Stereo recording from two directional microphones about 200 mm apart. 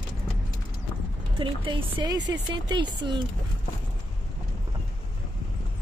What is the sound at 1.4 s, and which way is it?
Speech, 25° right (ahead or behind).